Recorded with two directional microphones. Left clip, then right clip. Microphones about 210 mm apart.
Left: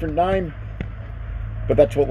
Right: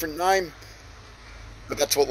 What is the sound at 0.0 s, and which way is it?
Speech, 40° right (ahead or behind).